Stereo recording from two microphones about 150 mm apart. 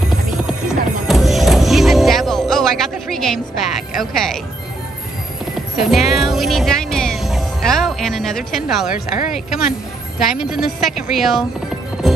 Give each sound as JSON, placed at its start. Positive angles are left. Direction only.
{"t": 0.5, "sound": "music", "side_deg": 0}
{"t": 4.0, "sound": "a woman's voice", "side_deg": 5}
{"t": 5.8, "sound": "speech", "side_deg": 0}
{"t": 8.9, "sound": "speech", "side_deg": 65}
{"t": 10.1, "sound": "a woman's voice", "side_deg": -5}